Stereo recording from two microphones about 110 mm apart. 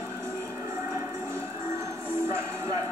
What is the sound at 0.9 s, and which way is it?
Music, 25° right (ahead or behind).